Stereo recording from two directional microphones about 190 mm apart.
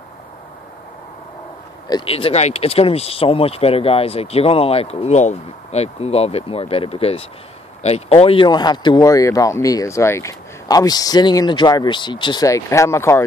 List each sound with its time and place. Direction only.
1.9 s speech: 25° left (ahead or behind)